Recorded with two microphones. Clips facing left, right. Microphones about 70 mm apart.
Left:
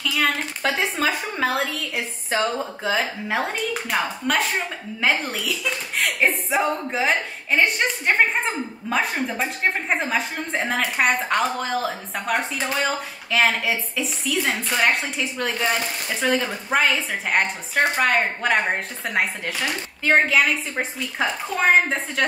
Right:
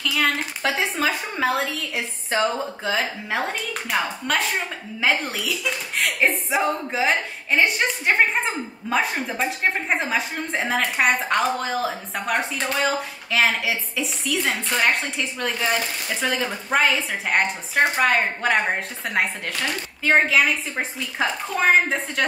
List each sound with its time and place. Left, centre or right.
0.0 s a woman's voice: centre